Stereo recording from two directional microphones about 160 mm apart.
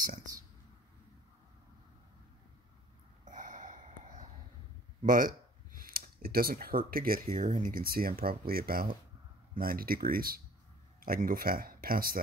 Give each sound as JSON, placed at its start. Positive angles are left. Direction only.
{"t": 0.0, "sound": "speech", "side_deg": -55}
{"t": 3.3, "sound": "a sound", "side_deg": -50}
{"t": 5.0, "sound": "speech", "side_deg": -55}